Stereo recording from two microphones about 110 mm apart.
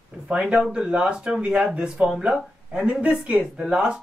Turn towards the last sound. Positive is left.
turn(degrees=-10)  # may be behind; listen again after turning